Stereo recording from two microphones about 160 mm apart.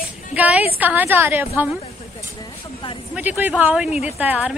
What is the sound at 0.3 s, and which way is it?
Speech, 10° right (ahead or behind).